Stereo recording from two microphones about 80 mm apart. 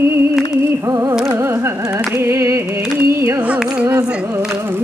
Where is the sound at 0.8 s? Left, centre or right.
Right.